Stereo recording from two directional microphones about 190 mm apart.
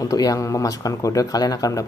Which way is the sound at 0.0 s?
20° left (ahead or behind).